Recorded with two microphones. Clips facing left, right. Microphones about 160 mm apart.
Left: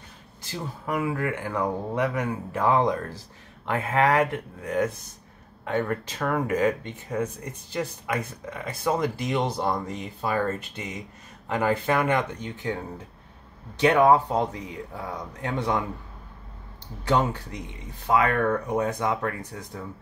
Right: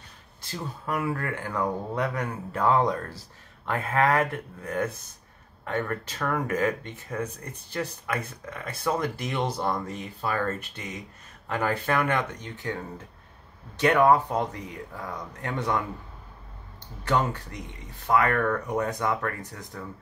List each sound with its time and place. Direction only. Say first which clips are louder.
0.8 s speech: left 2 dB; 15° left (ahead or behind)
17.1 s speech: left 2 dB; 15° left (ahead or behind)